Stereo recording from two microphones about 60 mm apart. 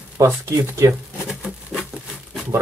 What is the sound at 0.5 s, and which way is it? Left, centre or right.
Speech, right.